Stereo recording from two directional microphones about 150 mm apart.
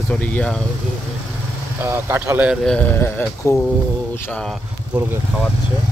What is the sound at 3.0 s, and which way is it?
Speech, 15° left (ahead or behind).